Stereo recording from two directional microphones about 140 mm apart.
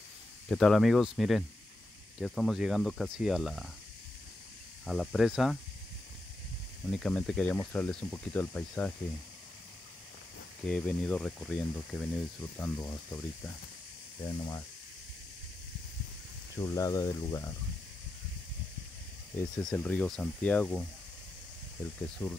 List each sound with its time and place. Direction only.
0.5 s speech: 5° left (ahead or behind)
4.8 s speech: centre (ahead or behind)
6.9 s speech: 5° left (ahead or behind)
10.6 s speech: 5° left (ahead or behind)
14.2 s speech: 30° left (ahead or behind)
16.5 s speech: 25° left (ahead or behind)
19.5 s speech: 5° left (ahead or behind)
22.2 s speech: 10° left (ahead or behind)